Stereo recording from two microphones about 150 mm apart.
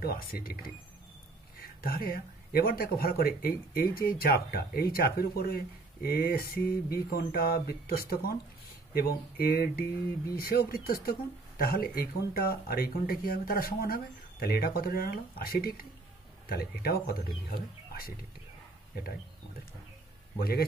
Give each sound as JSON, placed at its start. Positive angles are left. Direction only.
{"t": 0.0, "sound": "speech", "side_deg": 80}
{"t": 1.8, "sound": "speech", "side_deg": 75}
{"t": 8.9, "sound": "speech", "side_deg": 90}
{"t": 20.3, "sound": "speech", "side_deg": 90}